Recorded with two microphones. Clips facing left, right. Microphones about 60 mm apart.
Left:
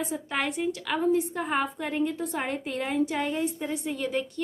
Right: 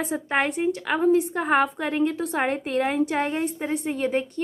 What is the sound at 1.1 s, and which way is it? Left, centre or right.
A woman's voice, right.